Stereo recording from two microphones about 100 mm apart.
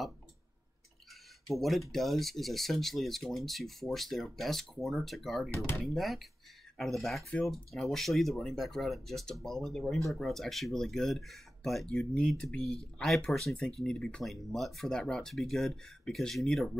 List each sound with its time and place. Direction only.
1.5 s speech: centre (ahead or behind)